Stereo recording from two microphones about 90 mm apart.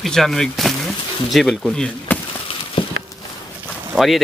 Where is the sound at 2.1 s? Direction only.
20° left (ahead or behind).